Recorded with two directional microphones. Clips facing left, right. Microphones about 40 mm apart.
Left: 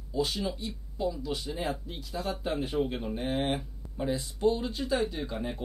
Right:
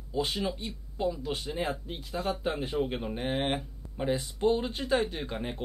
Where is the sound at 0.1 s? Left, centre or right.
Right.